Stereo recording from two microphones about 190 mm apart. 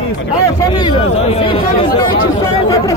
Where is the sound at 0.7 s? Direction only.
25° left (ahead or behind).